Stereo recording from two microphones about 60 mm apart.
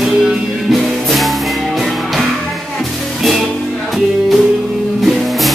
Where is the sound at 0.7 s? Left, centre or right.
Centre.